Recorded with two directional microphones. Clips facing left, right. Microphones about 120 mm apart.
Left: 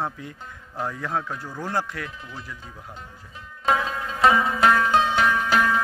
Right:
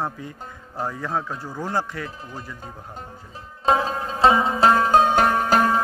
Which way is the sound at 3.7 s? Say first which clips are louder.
Right 3 dB; 35° right (ahead or behind).